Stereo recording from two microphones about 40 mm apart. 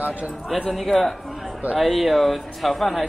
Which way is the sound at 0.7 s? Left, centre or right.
Centre.